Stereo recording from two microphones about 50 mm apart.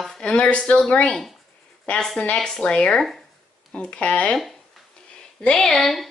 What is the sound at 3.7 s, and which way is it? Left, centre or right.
Speech, left.